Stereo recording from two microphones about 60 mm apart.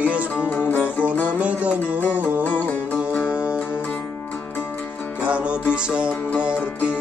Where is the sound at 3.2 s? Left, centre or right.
Centre.